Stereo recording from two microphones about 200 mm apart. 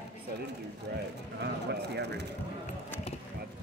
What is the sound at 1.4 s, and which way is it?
Speech, 55° right (ahead or behind).